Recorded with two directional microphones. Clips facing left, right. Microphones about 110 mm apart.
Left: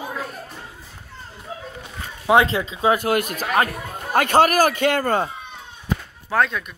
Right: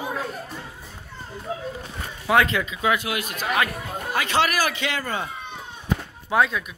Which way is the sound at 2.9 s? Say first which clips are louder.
Left 6 dB; 45° left (ahead or behind).